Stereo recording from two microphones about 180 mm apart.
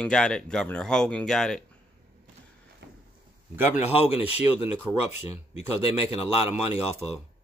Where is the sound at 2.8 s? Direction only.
65° right (ahead or behind).